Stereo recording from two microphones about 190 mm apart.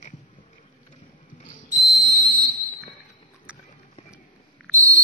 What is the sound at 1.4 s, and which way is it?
Whistle, 45° left (ahead or behind).